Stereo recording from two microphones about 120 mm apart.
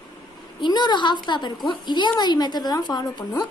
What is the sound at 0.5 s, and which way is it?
A woman's voice, 40° left (ahead or behind).